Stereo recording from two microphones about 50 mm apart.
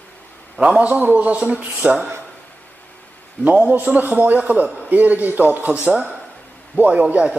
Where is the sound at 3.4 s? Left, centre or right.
Right.